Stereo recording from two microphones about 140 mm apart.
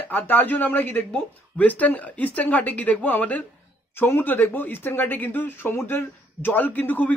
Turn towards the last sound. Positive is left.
turn(degrees=10)  # may be behind; listen again after turning